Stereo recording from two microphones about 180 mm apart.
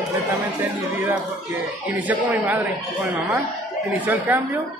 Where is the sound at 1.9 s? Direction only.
10° right (ahead or behind).